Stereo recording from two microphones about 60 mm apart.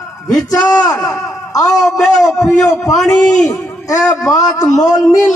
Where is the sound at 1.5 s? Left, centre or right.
Left.